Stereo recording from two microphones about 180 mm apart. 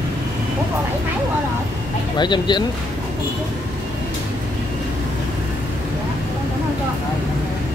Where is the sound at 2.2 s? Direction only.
25° left (ahead or behind).